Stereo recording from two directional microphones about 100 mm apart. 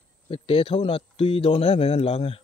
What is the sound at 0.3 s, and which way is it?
Speech, 65° left (ahead or behind).